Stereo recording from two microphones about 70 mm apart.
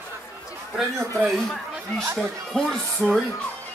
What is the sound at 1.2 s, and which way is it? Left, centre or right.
Speech, centre.